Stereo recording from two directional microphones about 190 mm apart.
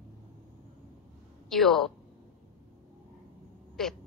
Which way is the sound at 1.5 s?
Centre (ahead or behind).